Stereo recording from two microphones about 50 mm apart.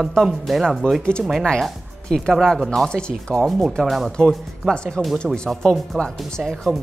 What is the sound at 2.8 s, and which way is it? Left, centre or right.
Speech, centre.